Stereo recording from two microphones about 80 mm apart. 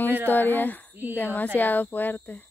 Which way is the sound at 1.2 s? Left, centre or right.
Left.